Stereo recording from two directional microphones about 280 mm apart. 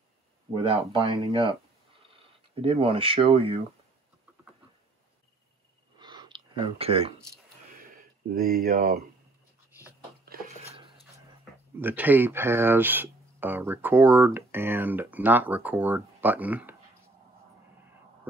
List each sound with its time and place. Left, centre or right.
0.6 s speech: centre
5.9 s a sound: centre
8.4 s speech: right
11.8 s speech: centre